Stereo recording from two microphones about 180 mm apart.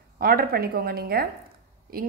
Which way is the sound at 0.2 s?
55° right (ahead or behind).